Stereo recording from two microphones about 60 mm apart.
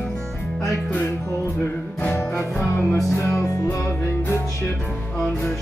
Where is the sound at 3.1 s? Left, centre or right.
Left.